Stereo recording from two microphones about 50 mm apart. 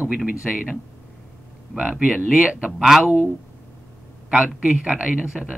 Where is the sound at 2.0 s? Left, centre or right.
Centre.